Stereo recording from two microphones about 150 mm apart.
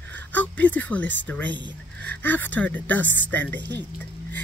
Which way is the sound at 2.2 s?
10° left (ahead or behind).